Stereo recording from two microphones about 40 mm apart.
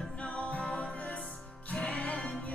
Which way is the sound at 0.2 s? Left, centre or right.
Left.